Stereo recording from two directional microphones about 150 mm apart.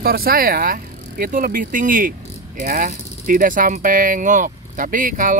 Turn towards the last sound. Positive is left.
turn(degrees=-60)  # may be behind; listen again after turning